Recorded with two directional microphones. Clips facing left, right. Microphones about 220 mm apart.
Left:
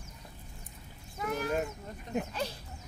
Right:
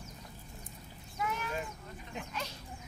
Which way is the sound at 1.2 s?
40° left (ahead or behind).